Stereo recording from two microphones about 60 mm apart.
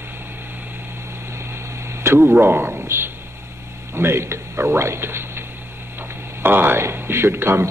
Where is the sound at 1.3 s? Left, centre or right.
Right.